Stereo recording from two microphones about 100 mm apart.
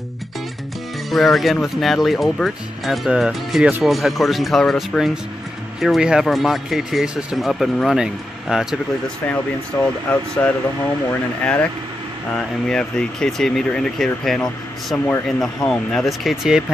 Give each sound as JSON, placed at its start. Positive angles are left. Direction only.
{"t": 1.1, "sound": "speech", "side_deg": 0}
{"t": 9.7, "sound": "speech", "side_deg": 25}
{"t": 10.4, "sound": "speech", "side_deg": 15}